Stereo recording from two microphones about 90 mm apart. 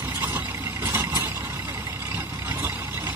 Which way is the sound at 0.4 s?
30° right (ahead or behind).